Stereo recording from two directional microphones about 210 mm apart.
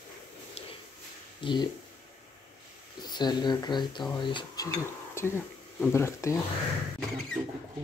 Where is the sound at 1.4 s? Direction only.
25° left (ahead or behind).